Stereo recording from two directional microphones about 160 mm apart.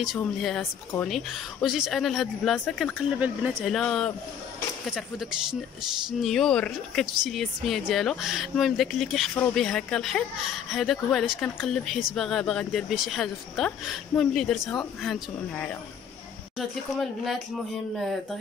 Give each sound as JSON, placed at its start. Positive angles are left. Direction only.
{"t": 0.0, "sound": "speech", "side_deg": 0}